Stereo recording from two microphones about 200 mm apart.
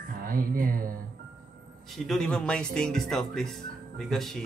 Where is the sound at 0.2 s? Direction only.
45° right (ahead or behind).